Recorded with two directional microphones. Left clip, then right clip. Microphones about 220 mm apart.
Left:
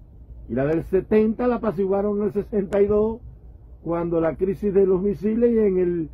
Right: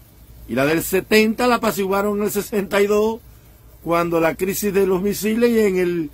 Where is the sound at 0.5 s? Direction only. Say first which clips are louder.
Right 3 dB; 15° right (ahead or behind).